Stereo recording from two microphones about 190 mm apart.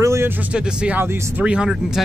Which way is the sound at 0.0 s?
15° right (ahead or behind).